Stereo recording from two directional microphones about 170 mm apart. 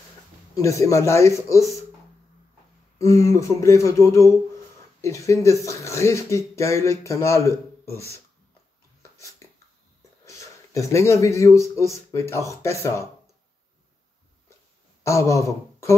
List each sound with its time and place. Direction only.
0.6 s speech: 15° left (ahead or behind)
3.0 s speech: 20° left (ahead or behind)
9.4 s a sound: 20° left (ahead or behind)
10.2 s a man's voice: 20° left (ahead or behind)
15.0 s speech: 15° left (ahead or behind)